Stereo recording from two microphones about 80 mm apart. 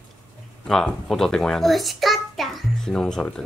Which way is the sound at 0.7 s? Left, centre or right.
Centre.